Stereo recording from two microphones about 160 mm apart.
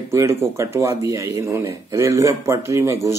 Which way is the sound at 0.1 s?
15° right (ahead or behind).